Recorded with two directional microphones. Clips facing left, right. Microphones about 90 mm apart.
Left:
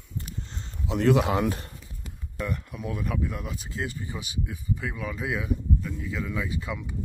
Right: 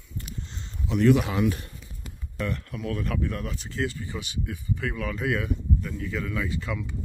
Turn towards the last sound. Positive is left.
turn(degrees=15)  # may be behind; listen again after turning